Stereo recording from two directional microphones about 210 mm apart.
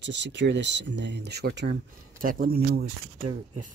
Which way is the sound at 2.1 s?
40° right (ahead or behind).